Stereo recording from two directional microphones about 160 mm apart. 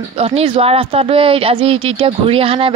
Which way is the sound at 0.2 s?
35° right (ahead or behind).